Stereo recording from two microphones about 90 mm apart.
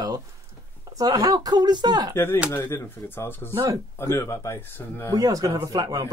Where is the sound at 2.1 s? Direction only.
25° left (ahead or behind).